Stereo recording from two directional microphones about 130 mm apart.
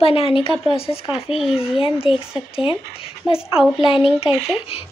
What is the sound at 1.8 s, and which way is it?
Speech, 45° left (ahead or behind).